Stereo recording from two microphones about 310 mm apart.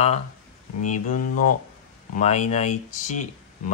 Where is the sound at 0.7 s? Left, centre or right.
Left.